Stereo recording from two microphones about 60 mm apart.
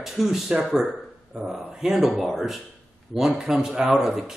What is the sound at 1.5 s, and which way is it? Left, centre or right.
Speech, centre.